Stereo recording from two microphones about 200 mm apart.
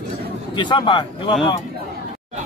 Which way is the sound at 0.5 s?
25° left (ahead or behind).